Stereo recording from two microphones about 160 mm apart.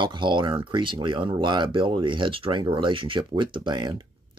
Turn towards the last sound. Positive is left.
turn(degrees=-30)  # may be behind; listen again after turning